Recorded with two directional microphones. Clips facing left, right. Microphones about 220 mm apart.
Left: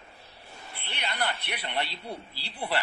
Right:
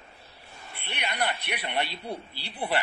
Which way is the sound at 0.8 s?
15° right (ahead or behind).